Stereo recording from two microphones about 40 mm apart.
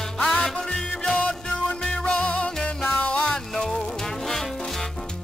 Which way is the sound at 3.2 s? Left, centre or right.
Centre.